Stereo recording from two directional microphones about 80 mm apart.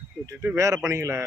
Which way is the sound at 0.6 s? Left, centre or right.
Right.